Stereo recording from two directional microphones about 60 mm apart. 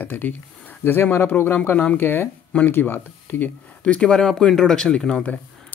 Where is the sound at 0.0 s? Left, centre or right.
Left.